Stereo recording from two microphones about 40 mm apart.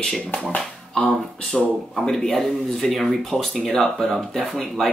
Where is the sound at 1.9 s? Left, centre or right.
Centre.